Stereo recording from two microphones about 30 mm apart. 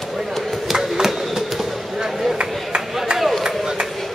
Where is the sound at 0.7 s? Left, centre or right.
Centre.